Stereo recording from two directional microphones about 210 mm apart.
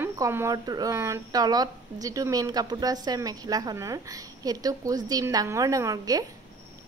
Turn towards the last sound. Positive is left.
turn(degrees=-15)  # may be behind; listen again after turning